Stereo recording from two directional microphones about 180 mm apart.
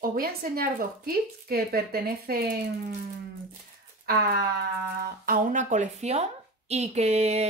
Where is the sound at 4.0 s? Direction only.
55° right (ahead or behind).